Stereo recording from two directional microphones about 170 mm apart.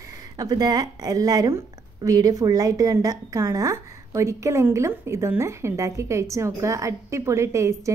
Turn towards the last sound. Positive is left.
turn(degrees=-15)  # may be behind; listen again after turning